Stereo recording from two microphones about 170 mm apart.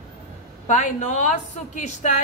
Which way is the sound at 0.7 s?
45° left (ahead or behind).